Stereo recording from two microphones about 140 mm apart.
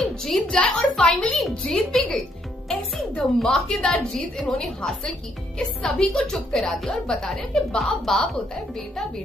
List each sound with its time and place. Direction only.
0.0 s a woman's voice: centre (ahead or behind)